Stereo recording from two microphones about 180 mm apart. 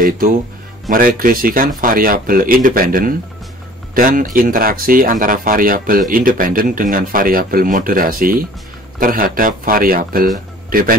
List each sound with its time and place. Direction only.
0.8 s speech: 50° right (ahead or behind)